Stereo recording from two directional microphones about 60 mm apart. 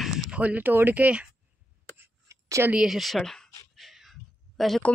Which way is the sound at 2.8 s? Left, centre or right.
Centre.